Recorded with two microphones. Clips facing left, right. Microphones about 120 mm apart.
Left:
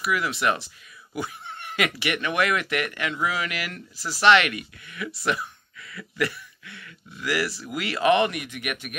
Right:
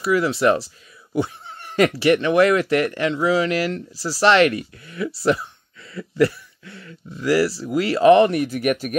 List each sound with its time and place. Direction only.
0.0 s speech: 30° right (ahead or behind)